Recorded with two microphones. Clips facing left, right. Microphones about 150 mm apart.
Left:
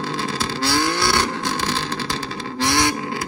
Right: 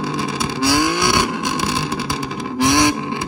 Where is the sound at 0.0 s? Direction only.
15° right (ahead or behind).